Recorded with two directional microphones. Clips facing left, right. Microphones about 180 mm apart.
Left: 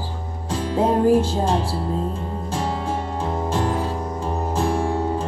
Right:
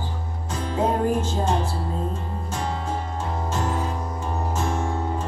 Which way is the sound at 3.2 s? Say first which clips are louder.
Left 6 dB; 30° left (ahead or behind).